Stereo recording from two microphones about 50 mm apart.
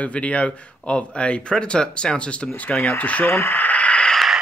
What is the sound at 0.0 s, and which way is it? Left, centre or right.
Speech, left.